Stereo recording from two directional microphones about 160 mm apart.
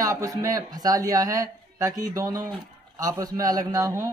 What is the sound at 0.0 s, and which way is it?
A man's voice, 20° right (ahead or behind).